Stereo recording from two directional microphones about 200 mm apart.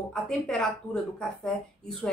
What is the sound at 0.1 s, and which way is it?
A woman's voice, centre (ahead or behind).